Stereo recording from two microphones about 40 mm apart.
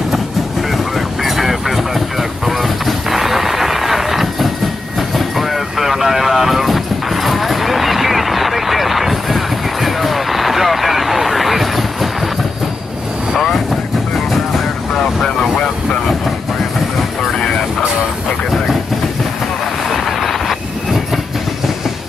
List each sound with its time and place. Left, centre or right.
0.9 s vehicle: centre
7.2 s a sound: centre
13.3 s vehicle: centre
15.5 s vehicle: left
19.9 s vehicle: centre